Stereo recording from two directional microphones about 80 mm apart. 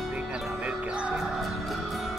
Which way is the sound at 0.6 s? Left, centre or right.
Centre.